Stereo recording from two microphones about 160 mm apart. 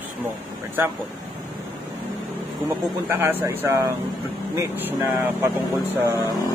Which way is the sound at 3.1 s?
15° right (ahead or behind).